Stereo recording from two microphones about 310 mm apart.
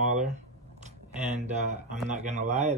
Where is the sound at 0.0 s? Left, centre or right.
Right.